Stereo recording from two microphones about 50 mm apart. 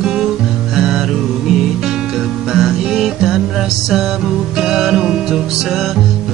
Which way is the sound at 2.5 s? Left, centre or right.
Centre.